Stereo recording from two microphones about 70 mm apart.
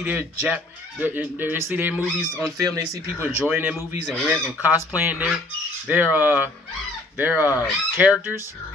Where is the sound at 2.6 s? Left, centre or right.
Right.